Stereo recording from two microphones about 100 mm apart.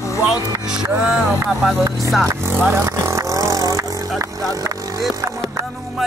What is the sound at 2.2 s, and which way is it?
Vehicle, 25° right (ahead or behind).